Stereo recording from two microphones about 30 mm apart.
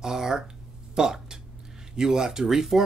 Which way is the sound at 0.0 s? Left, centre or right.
Centre.